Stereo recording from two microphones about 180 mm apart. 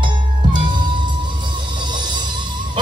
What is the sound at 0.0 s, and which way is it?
Music, 25° right (ahead or behind).